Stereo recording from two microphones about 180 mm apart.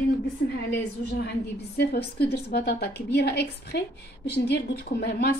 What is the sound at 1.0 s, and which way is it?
A woman's voice, 65° left (ahead or behind).